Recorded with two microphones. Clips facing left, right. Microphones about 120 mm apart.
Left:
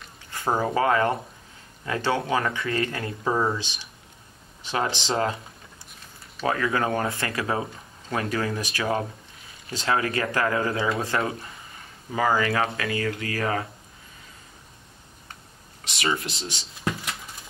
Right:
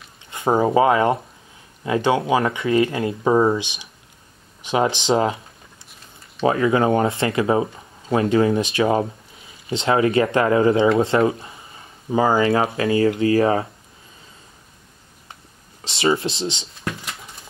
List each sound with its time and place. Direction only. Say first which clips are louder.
0.3 s speech: right 7 dB; 20° right (ahead or behind)
6.4 s speech: right 7 dB; 20° right (ahead or behind)
15.8 s speech: right 8 dB; 30° right (ahead or behind)